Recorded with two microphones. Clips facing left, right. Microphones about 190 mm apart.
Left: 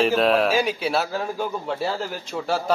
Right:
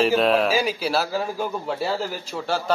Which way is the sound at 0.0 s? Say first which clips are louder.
Even; centre (ahead or behind).